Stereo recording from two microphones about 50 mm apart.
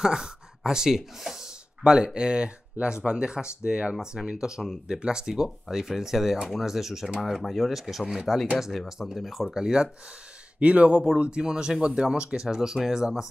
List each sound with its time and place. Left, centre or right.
0.0 s speech: centre
1.8 s speech: centre
10.6 s speech: right; by 13.3 s centre